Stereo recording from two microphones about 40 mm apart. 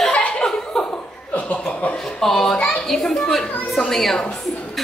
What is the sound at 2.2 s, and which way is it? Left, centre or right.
A woman's voice, centre.